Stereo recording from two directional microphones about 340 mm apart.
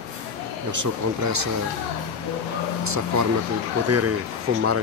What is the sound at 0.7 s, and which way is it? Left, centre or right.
Speech, right.